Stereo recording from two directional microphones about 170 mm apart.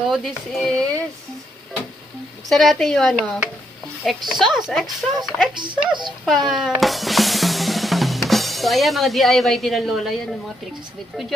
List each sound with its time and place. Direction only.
0.1 s speech: centre (ahead or behind)
2.5 s speech: centre (ahead or behind)
5.5 s speech: 25° right (ahead or behind)
6.2 s music: centre (ahead or behind)